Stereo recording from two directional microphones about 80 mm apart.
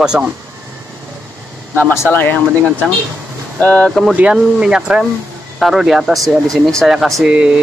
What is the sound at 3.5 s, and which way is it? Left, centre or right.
Speech, centre.